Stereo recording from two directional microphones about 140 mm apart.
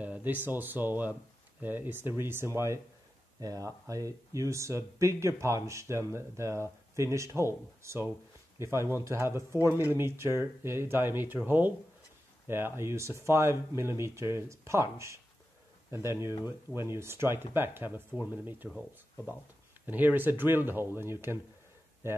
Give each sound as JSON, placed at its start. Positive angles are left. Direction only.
{"t": 0.0, "sound": "speech", "side_deg": -10}
{"t": 19.9, "sound": "speech", "side_deg": -10}